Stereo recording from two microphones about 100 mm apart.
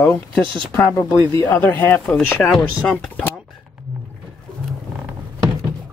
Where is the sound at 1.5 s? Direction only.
20° left (ahead or behind).